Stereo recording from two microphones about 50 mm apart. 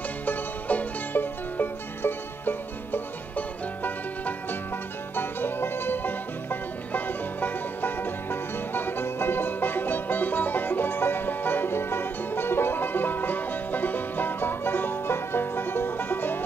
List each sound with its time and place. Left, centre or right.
0.2 s music: left